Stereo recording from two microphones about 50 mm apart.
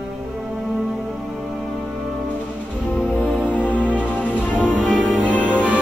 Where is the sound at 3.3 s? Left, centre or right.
Centre.